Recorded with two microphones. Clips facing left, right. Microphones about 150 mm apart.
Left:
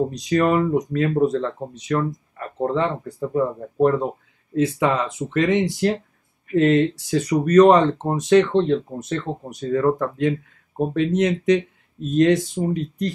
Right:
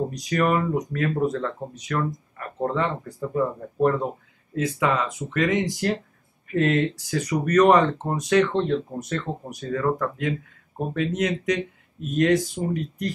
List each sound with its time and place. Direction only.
0.1 s speech: 25° left (ahead or behind)
4.6 s speech: 25° left (ahead or behind)